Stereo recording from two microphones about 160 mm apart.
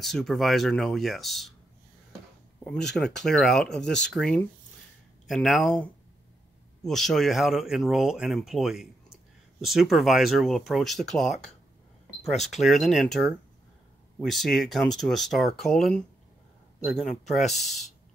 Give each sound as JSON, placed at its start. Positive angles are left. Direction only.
{"t": 0.0, "sound": "speech", "side_deg": 0}
{"t": 2.6, "sound": "speech", "side_deg": 5}